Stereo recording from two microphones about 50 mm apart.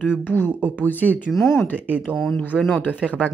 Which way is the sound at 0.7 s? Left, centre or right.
Left.